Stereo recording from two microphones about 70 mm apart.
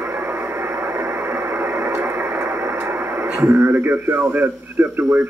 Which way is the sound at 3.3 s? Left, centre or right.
Right.